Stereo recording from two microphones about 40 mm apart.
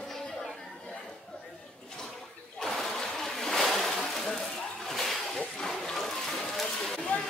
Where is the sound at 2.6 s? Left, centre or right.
Centre.